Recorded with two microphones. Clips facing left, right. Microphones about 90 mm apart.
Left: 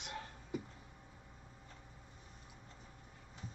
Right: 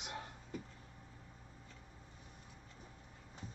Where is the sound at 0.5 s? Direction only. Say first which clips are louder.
Left 5 dB; 15° left (ahead or behind).